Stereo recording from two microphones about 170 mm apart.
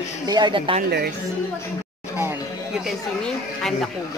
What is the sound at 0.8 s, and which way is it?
Speech, 70° right (ahead or behind).